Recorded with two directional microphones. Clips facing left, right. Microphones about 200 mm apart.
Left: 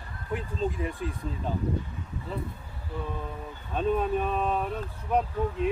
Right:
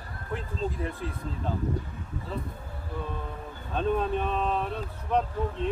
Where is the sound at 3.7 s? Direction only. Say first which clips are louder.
Left 1 dB; 5° left (ahead or behind).